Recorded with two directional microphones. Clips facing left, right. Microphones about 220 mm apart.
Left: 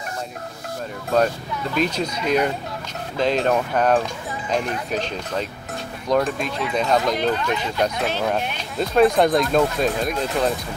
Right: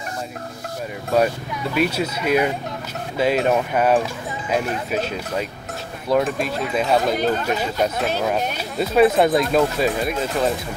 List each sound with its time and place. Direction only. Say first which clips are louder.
1.1 s speech: right 1 dB; 10° right (ahead or behind)
7.3 s speech: right 1 dB; 40° right (ahead or behind)
8.5 s speech: right 1 dB; 5° right (ahead or behind)